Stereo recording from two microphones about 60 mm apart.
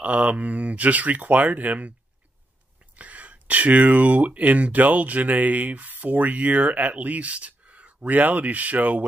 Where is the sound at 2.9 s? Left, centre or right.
Right.